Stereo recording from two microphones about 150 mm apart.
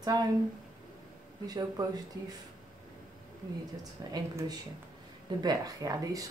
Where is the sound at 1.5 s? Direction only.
25° right (ahead or behind).